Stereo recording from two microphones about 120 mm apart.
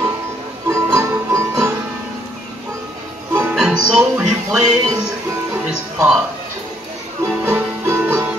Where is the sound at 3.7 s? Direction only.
10° right (ahead or behind).